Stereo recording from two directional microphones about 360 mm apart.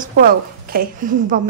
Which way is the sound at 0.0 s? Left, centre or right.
Right.